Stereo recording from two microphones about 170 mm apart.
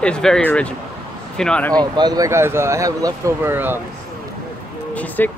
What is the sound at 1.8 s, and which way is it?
Speech, 25° right (ahead or behind).